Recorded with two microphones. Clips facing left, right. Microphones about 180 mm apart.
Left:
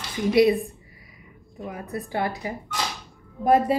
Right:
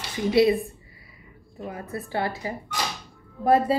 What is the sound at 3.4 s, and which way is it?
Speech, 20° left (ahead or behind).